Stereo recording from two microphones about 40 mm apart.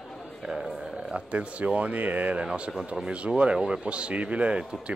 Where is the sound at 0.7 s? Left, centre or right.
Centre.